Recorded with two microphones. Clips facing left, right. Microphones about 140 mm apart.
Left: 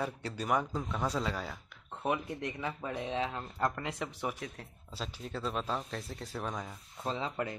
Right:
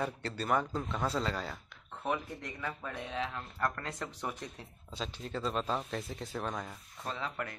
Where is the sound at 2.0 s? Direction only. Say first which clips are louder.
Left 2 dB; 15° left (ahead or behind).